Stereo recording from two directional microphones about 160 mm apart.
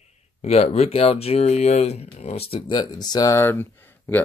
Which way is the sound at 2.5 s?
25° left (ahead or behind).